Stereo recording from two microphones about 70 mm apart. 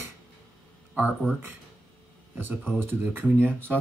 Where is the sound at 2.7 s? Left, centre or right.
Right.